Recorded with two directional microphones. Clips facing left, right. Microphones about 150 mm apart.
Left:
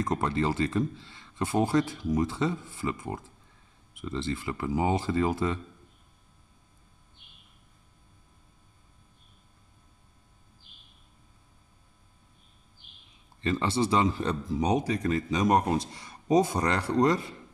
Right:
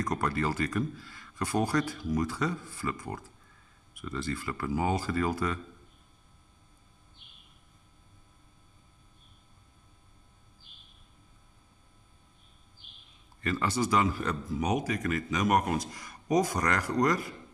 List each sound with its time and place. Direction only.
0.0 s speech: 25° left (ahead or behind)
13.4 s speech: 25° left (ahead or behind)